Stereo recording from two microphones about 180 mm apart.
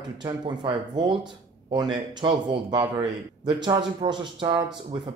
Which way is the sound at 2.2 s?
25° right (ahead or behind).